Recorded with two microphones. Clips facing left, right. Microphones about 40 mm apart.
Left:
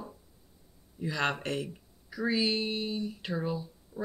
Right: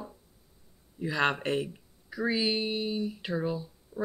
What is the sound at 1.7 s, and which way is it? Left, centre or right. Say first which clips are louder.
Speech: right 1 dB; centre.